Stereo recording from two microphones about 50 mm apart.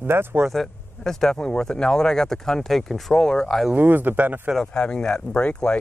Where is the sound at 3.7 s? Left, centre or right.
Right.